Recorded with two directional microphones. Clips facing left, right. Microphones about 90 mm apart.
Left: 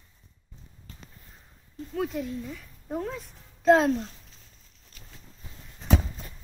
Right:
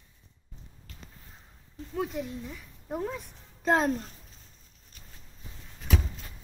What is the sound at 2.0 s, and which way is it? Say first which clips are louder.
Speech: left 2 dB; 5° right (ahead or behind).